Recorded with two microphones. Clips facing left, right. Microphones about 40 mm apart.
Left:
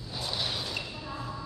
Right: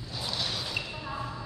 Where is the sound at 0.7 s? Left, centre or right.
Centre.